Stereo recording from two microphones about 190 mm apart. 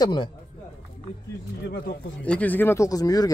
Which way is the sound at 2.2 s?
5° left (ahead or behind).